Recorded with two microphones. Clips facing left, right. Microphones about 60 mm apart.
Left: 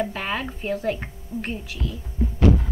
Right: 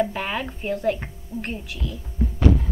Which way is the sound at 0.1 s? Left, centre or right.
Centre.